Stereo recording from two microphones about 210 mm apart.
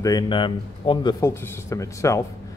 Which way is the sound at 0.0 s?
20° left (ahead or behind).